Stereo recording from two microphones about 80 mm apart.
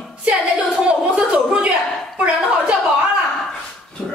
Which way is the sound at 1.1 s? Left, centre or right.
Centre.